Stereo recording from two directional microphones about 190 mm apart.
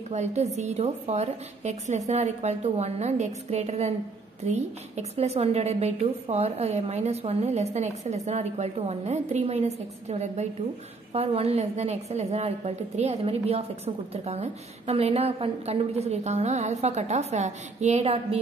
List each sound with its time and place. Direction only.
0.1 s a woman's voice: 35° right (ahead or behind)